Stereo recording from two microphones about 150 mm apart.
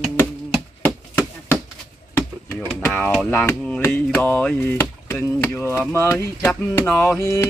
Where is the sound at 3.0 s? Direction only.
10° left (ahead or behind).